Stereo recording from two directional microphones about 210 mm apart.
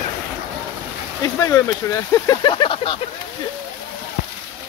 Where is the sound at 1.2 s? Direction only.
15° left (ahead or behind).